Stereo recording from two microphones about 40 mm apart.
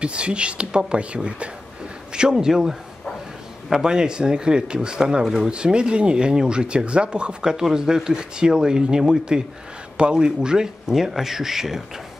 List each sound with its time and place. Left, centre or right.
0.0 s speech: right
2.1 s speech: centre
3.8 s speech: centre
5.2 s speech: centre
5.5 s speech: right